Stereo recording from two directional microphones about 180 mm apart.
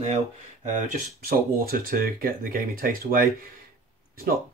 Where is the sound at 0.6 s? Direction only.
50° right (ahead or behind).